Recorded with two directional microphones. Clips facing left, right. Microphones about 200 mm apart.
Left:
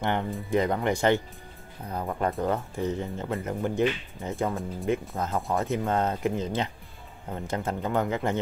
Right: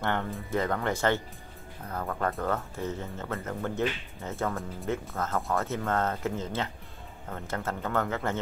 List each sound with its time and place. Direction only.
0.0 s speech: 15° left (ahead or behind)